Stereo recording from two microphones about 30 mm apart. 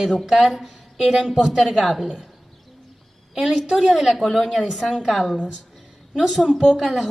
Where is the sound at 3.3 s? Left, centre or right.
Centre.